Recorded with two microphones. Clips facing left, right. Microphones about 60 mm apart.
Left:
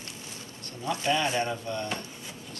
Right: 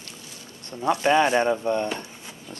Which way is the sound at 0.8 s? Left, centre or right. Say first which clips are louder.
Right 8 dB; right.